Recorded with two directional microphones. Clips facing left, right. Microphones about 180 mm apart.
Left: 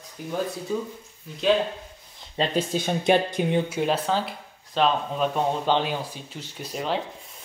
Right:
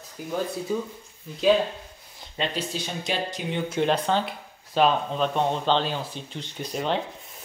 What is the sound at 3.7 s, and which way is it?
Speech, 5° left (ahead or behind).